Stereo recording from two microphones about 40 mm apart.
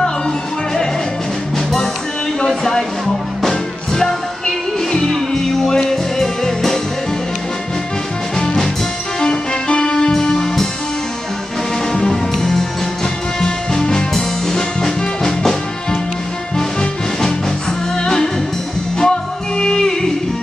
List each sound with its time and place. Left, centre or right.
2.4 s a sound: centre
3.4 s music: centre
9.2 s music: centre
11.9 s music: centre
17.9 s music: centre